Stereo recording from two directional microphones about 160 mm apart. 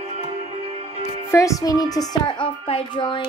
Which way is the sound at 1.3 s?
20° left (ahead or behind).